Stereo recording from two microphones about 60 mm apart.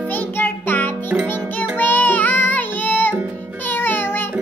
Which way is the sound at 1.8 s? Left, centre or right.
Left.